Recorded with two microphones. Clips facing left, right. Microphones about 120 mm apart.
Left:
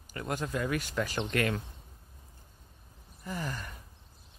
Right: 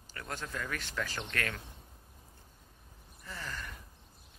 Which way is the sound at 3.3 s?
15° left (ahead or behind).